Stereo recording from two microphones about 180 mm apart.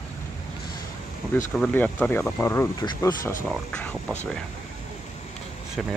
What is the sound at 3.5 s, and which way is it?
Speech, 5° left (ahead or behind).